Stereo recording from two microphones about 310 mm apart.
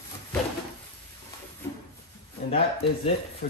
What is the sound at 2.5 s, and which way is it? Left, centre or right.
Speech, centre.